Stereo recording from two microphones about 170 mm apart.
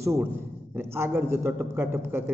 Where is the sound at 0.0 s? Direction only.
15° right (ahead or behind).